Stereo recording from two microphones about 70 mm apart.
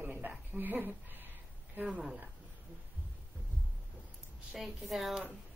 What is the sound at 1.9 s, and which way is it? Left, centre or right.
Speech, centre.